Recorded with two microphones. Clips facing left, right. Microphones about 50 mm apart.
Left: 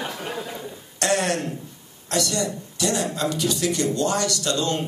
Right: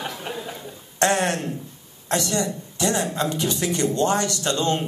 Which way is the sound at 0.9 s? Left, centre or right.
Right.